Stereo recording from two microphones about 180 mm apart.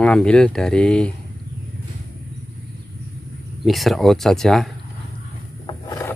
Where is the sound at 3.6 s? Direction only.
Centre (ahead or behind).